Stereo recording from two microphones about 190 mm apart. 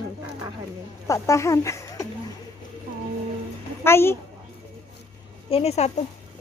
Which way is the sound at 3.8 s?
15° left (ahead or behind).